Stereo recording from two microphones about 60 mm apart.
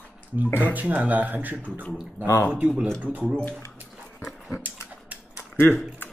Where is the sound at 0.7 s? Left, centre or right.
Right.